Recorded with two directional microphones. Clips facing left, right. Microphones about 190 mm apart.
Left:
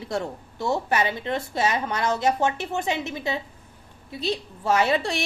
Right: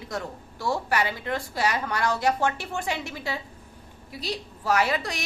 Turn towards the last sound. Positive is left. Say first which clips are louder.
# left 3 dB
turn(degrees=25)  # may be behind; listen again after turning